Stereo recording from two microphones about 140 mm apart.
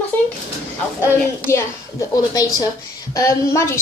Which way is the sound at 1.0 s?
20° left (ahead or behind).